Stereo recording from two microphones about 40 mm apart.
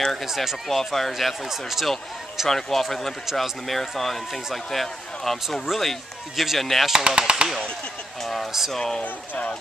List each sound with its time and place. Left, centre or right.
0.0 s run: centre
0.4 s speech: centre
2.5 s a man's voice: centre
7.1 s speech: right
8.2 s speech: centre
8.5 s speech: centre
8.7 s a man's voice: centre
9.0 s speech: left